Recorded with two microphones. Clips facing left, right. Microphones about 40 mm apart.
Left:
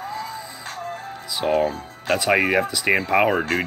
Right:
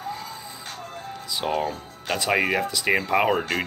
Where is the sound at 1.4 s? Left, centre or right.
Centre.